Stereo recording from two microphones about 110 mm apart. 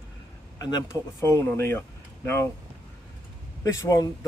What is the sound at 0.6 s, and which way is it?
Speech, 35° left (ahead or behind).